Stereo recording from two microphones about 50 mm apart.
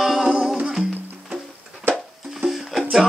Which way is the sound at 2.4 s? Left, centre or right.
Centre.